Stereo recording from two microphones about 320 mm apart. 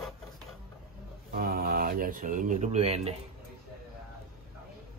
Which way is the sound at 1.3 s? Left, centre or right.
Right.